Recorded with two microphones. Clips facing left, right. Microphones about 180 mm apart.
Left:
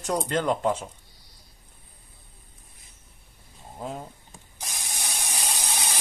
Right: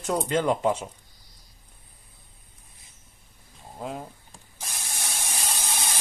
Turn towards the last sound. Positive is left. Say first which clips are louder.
# even
turn(degrees=15)  # may be behind; listen again after turning